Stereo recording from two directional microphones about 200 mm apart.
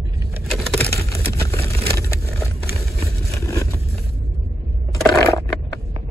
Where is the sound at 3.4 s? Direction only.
15° left (ahead or behind).